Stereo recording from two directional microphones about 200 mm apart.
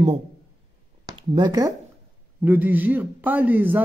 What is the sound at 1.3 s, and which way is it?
Speech, 20° right (ahead or behind).